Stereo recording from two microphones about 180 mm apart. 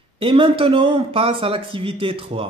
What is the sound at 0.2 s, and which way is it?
A man's voice, 30° right (ahead or behind).